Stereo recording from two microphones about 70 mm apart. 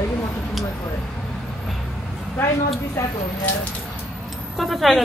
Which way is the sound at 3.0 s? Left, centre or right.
Left.